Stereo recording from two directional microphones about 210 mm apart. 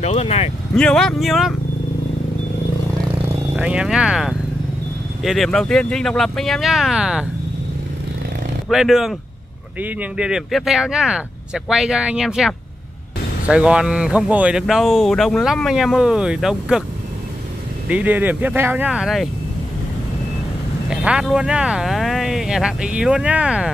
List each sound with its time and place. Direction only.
0.0 s speech: 30° left (ahead or behind)
0.7 s speech: 5° left (ahead or behind)
3.5 s speech: 5° right (ahead or behind)
8.6 s speech: centre (ahead or behind)
17.8 s speech: 5° right (ahead or behind)
20.9 s speech: 5° right (ahead or behind)